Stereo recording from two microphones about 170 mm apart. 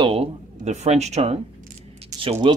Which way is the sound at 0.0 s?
35° right (ahead or behind).